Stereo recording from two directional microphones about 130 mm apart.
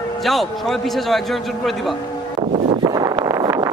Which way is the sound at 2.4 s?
55° right (ahead or behind).